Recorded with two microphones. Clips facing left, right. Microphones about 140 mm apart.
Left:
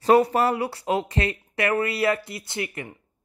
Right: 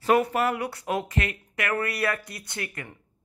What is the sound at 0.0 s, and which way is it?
Speech, 35° left (ahead or behind).